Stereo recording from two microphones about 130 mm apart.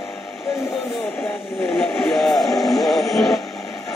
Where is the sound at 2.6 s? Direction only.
Centre (ahead or behind).